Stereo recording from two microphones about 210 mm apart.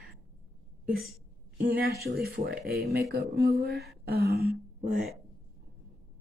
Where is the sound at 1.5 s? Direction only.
50° right (ahead or behind).